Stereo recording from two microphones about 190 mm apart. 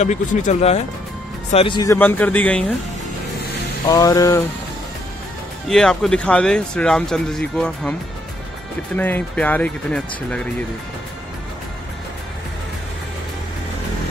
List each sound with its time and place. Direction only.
0.0 s speech: 40° left (ahead or behind)
1.5 s music: 30° left (ahead or behind)
2.0 s speech: 10° left (ahead or behind)
3.8 s music: 20° left (ahead or behind)
5.7 s speech: 5° left (ahead or behind)
8.9 s speech: 10° left (ahead or behind)